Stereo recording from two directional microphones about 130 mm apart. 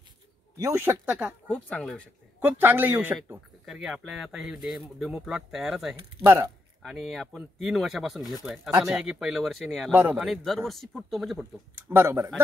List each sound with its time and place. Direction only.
0.6 s speech: 20° right (ahead or behind)
1.5 s speech: 5° left (ahead or behind)
2.6 s speech: 15° right (ahead or behind)
3.6 s speech: 5° right (ahead or behind)
6.2 s speech: 20° right (ahead or behind)
6.8 s speech: centre (ahead or behind)
9.8 s speech: 15° right (ahead or behind)
10.2 s speech: centre (ahead or behind)
11.7 s speech: 20° right (ahead or behind)